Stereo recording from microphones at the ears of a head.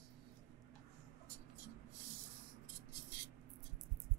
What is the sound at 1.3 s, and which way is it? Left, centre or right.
Writing, right.